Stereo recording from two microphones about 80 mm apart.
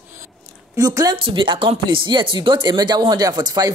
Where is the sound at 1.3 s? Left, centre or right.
Right.